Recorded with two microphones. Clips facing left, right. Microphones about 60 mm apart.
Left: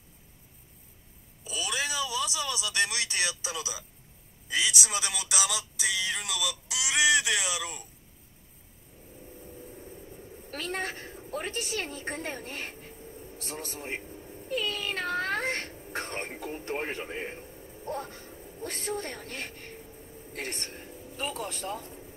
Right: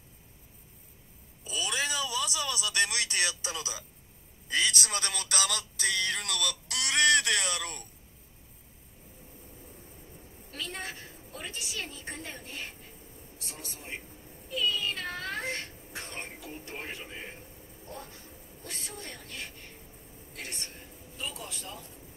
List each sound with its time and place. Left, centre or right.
1.4 s a sound: centre
4.5 s speech: centre
10.5 s a woman's voice: left